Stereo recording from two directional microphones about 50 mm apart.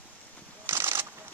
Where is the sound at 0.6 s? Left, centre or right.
Right.